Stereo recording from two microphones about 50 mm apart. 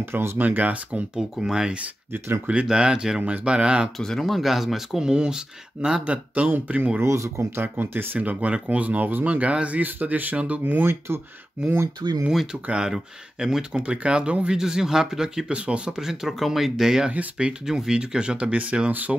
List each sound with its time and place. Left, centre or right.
0.0 s speech: right
0.4 s speech: right
1.1 s speech: centre
4.0 s speech: centre
5.1 s speech: centre
6.0 s speech: right
7.0 s speech: right
7.8 s speech: right
9.8 s speech: right
10.8 s speech: right
12.6 s speech: centre
14.6 s speech: centre
15.5 s speech: right
16.0 s speech: centre; by 19.1 s right